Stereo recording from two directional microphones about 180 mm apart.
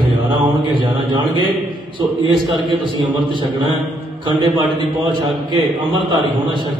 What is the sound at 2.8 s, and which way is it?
A man's voice, 25° right (ahead or behind).